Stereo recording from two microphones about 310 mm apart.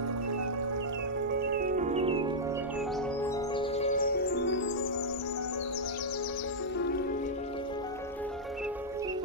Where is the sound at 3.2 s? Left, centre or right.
Centre.